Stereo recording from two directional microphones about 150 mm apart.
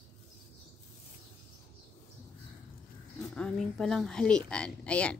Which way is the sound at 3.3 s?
5° left (ahead or behind).